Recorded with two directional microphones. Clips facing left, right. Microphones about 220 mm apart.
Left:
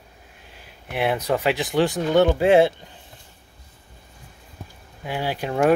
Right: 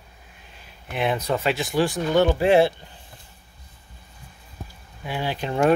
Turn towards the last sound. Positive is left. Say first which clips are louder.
# left 1 dB
turn(degrees=10)  # may be behind; listen again after turning